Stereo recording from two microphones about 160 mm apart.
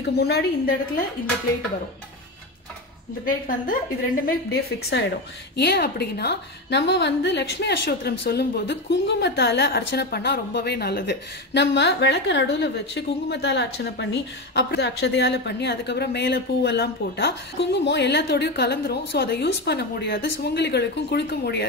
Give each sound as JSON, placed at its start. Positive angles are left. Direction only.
{"t": 0.0, "sound": "a woman's voice", "side_deg": 80}
{"t": 3.3, "sound": "a woman's voice", "side_deg": 60}
{"t": 4.3, "sound": "a woman's voice", "side_deg": 75}